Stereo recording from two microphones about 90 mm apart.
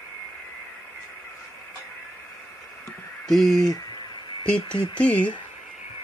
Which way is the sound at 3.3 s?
Centre (ahead or behind).